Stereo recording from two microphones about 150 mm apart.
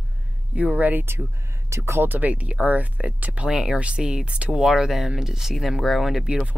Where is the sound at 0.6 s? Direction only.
10° right (ahead or behind).